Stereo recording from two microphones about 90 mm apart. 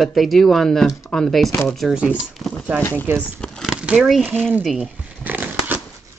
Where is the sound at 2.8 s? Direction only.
20° left (ahead or behind).